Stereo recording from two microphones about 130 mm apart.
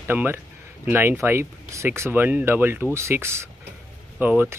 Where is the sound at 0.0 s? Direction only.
15° right (ahead or behind).